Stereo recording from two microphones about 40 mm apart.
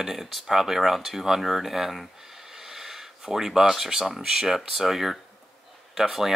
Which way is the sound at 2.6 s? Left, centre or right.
Centre.